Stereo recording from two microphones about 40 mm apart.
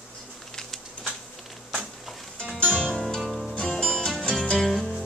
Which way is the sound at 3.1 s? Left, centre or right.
Centre.